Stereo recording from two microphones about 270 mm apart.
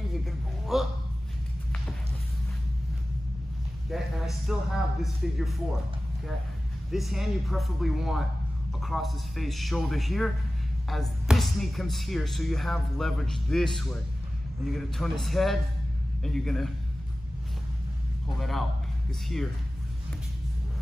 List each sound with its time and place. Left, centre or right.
0.1 s a sound: centre
3.9 s speech: centre
6.9 s speech: centre
18.4 s speech: centre